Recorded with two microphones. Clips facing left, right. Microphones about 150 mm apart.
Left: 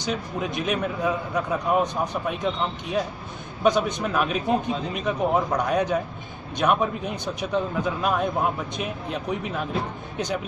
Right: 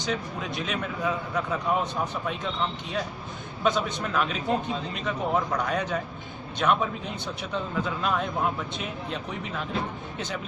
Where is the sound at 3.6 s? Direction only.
15° left (ahead or behind).